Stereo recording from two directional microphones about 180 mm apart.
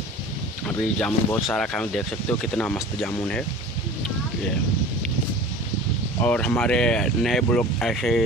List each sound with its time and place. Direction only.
0.7 s speech: 10° left (ahead or behind)
6.2 s speech: 5° left (ahead or behind)